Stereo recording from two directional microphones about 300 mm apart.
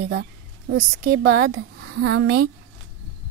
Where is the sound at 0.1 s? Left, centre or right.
Right.